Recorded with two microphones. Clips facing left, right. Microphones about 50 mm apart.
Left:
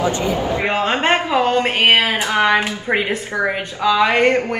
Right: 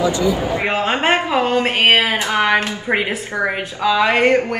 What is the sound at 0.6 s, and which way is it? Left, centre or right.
A woman's voice, centre.